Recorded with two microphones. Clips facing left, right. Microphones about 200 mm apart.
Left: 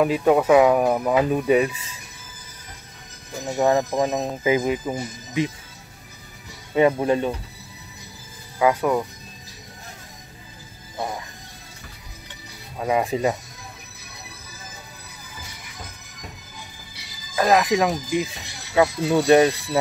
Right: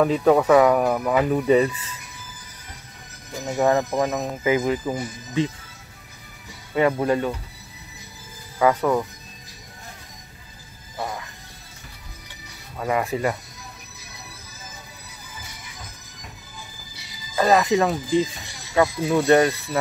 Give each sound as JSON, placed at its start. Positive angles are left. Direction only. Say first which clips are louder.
{"t": 0.0, "sound": "speech", "louder": "right 1 dB", "side_deg": 5}
{"t": 3.5, "sound": "speech", "louder": "even", "side_deg": 20}
{"t": 6.7, "sound": "speech", "louder": "left 2 dB", "side_deg": 20}
{"t": 8.5, "sound": "speech", "louder": "even", "side_deg": 10}
{"t": 12.7, "sound": "speech", "louder": "left 2 dB", "side_deg": 15}
{"t": 17.4, "sound": "speech", "louder": "even", "side_deg": 5}
{"t": 18.0, "sound": "speech", "louder": "right 3 dB", "side_deg": 70}
{"t": 18.8, "sound": "speech", "louder": "left 1 dB", "side_deg": 10}